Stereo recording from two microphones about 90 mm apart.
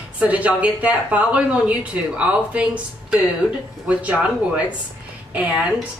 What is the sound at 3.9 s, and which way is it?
Speech, 15° right (ahead or behind).